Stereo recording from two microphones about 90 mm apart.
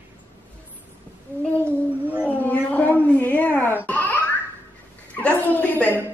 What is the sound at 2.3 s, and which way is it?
Crying, 20° left (ahead or behind).